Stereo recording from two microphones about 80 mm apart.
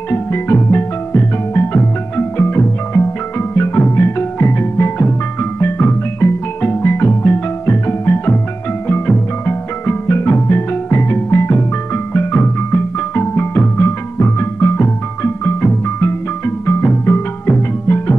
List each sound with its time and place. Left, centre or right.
0.1 s music: left